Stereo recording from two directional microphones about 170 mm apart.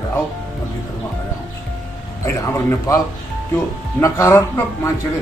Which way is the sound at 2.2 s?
15° left (ahead or behind).